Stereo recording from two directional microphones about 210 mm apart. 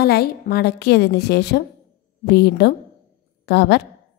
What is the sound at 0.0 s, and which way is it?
A woman's voice, 50° left (ahead or behind).